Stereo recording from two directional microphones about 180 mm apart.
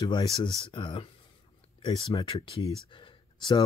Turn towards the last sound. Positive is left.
turn(degrees=25)  # may be behind; listen again after turning